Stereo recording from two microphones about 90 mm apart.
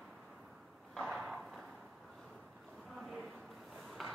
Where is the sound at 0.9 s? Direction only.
Centre (ahead or behind).